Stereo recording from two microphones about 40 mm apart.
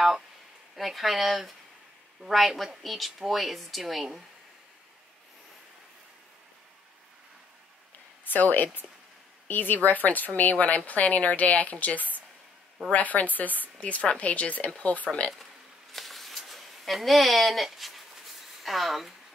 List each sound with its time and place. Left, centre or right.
0.7 s speech: centre
8.3 s speech: left
15.9 s a sound: centre